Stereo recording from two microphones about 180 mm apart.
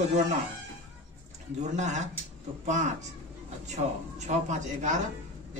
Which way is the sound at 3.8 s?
40° right (ahead or behind).